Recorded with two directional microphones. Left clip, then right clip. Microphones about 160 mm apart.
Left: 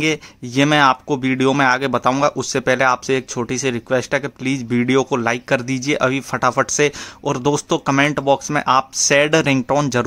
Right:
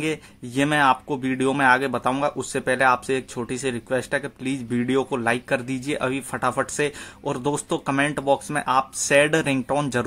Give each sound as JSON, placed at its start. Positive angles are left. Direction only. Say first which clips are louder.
{"t": 0.0, "sound": "speech", "louder": "left 7 dB", "side_deg": 30}